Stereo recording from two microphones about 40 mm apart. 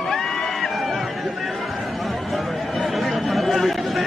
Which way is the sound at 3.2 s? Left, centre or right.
Centre.